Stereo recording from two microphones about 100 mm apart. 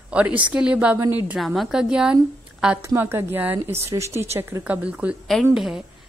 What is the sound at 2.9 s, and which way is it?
A woman's voice, 20° right (ahead or behind).